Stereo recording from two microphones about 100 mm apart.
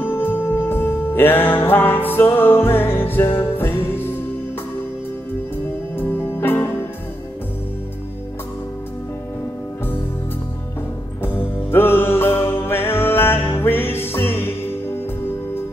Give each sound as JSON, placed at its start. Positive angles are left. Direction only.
{"t": 0.0, "sound": "music", "side_deg": 20}
{"t": 5.9, "sound": "music", "side_deg": 20}
{"t": 11.2, "sound": "music", "side_deg": 20}